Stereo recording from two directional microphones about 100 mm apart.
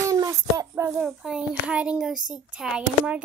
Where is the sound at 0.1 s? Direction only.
35° right (ahead or behind).